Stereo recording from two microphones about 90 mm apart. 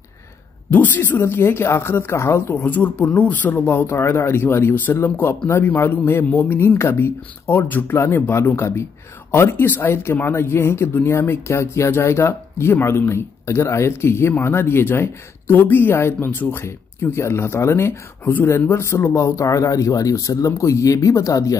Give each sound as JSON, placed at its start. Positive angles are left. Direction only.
{"t": 0.7, "sound": "speech", "side_deg": 20}